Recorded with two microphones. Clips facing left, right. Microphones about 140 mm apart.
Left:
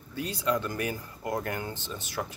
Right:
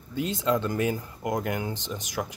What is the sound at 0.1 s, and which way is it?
Speech, 20° right (ahead or behind).